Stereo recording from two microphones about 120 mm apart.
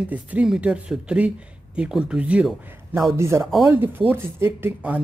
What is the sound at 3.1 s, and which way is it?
Speech, 20° right (ahead or behind).